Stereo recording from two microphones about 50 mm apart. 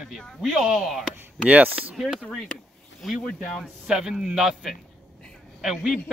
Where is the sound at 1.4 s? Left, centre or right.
Right.